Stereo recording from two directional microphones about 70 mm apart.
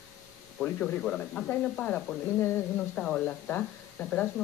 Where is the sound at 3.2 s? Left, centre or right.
Centre.